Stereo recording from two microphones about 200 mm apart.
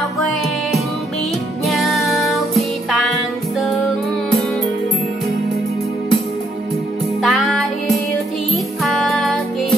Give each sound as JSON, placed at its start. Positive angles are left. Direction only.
{"t": 1.7, "sound": "music", "side_deg": 0}
{"t": 7.2, "sound": "music", "side_deg": 0}